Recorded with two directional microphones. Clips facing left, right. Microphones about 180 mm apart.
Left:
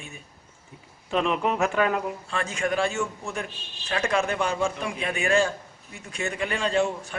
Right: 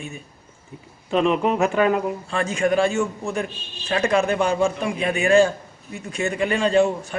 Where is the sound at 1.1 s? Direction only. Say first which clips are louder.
Right 5 dB; centre (ahead or behind).